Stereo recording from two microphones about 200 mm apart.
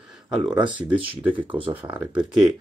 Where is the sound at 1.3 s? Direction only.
25° right (ahead or behind).